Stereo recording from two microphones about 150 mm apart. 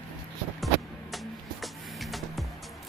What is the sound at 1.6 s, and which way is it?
Music, centre (ahead or behind).